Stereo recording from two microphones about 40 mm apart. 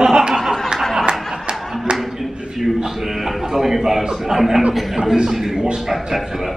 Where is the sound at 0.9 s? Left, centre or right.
Right.